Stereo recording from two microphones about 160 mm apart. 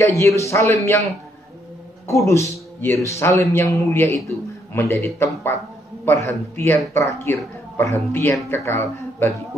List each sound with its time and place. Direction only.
0.2 s speech: 20° left (ahead or behind)
2.0 s speech: 20° left (ahead or behind)